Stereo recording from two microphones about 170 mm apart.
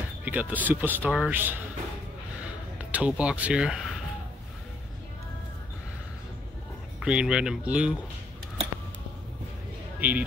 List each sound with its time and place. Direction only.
0.2 s speech: 10° right (ahead or behind)
1.3 s speech: 10° right (ahead or behind)
2.8 s speech: 10° right (ahead or behind)
7.0 s speech: 5° right (ahead or behind)
9.9 s speech: 10° right (ahead or behind)